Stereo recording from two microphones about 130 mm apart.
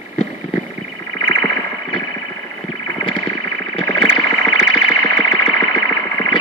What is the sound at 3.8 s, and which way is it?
Synthesizer, 40° left (ahead or behind).